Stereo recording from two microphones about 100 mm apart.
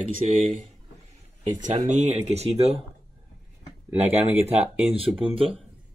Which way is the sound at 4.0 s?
85° right.